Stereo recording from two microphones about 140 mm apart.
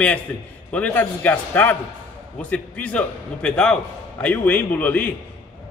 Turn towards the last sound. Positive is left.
turn(degrees=10)  # may be behind; listen again after turning